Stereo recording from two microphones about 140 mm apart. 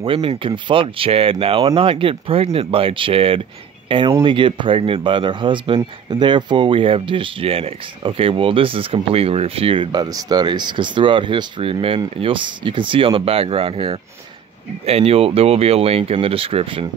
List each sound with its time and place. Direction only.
0.0 s speech: 40° right (ahead or behind)